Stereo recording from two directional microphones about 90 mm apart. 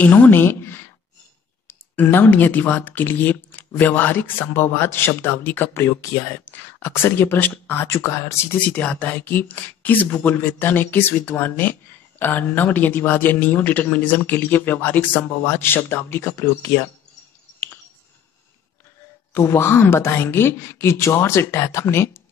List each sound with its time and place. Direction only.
0.0 s speech: 20° left (ahead or behind)
8.5 s speech: 15° left (ahead or behind); by 16.8 s 35° left (ahead or behind)
19.3 s speech: 30° left (ahead or behind)